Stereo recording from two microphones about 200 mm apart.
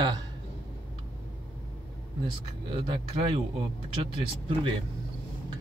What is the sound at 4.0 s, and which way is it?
Speech, 25° right (ahead or behind).